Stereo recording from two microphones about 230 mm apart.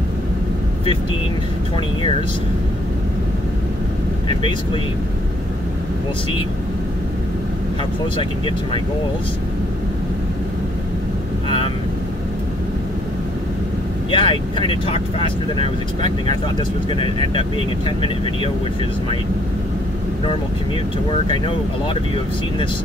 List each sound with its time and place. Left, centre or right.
8.2 s speech: left
11.4 s vehicle: left
14.1 s speech: left
21.3 s speech: left